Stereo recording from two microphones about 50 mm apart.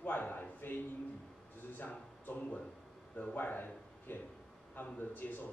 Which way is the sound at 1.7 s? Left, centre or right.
Left.